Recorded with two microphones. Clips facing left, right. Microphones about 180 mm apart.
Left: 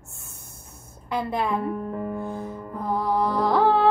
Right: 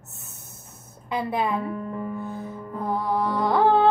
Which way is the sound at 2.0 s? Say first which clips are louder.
Left 2 dB; 55° left (ahead or behind).